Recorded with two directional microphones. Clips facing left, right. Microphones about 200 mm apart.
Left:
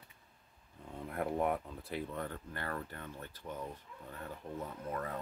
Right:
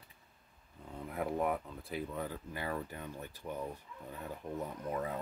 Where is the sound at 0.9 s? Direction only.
Centre (ahead or behind).